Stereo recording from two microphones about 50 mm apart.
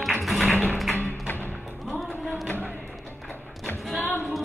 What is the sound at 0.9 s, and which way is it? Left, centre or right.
Music, left.